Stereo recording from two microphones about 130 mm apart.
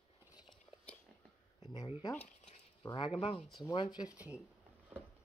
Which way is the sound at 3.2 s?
45° left (ahead or behind).